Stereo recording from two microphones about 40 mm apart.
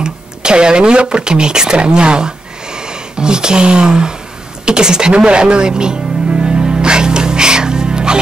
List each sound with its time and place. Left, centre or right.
0.0 s speech: right
6.4 s music: right